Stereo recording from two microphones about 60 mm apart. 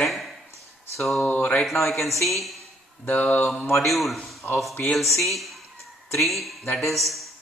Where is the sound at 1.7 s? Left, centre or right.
Centre.